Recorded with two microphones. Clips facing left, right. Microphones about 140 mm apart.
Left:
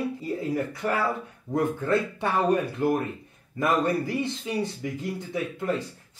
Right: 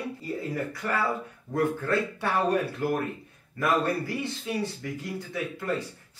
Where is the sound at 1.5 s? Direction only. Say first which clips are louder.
Left 2 dB; 20° left (ahead or behind).